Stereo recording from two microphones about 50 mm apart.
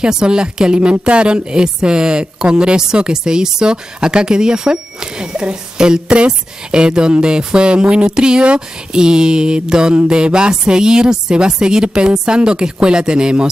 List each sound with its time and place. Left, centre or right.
0.0 s speech: centre